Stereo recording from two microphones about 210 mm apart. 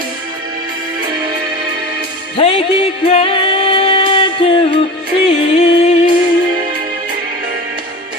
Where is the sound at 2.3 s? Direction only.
25° left (ahead or behind).